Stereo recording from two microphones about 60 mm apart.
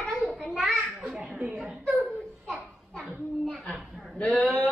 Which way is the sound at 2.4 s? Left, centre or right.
Centre.